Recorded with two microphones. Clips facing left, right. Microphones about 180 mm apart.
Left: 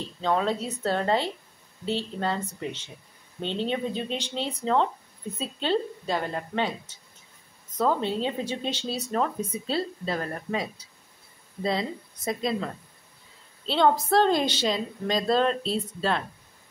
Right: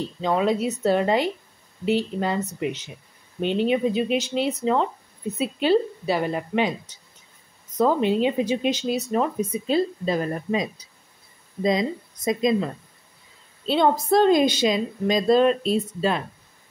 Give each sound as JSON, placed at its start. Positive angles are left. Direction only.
{"t": 0.2, "sound": "a woman's voice", "side_deg": -10}
{"t": 13.7, "sound": "a woman's voice", "side_deg": -10}